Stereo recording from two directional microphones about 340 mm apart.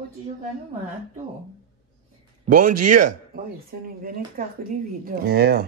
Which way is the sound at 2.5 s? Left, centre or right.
Right.